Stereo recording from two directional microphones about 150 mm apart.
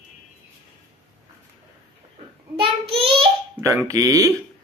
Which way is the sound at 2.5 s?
40° right (ahead or behind).